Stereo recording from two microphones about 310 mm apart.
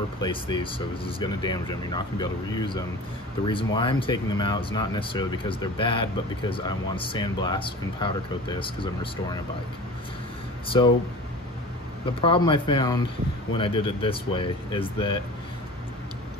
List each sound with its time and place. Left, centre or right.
0.2 s speech: centre
10.7 s speech: centre
12.2 s speech: centre